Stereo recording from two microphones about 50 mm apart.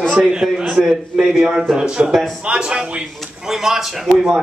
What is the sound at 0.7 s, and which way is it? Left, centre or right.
A man's voice, centre.